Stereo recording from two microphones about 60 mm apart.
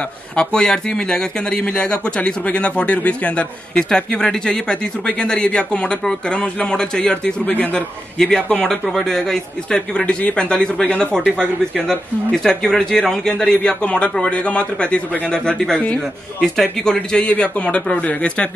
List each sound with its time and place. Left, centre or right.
0.4 s a man's voice: centre
8.2 s a man's voice: centre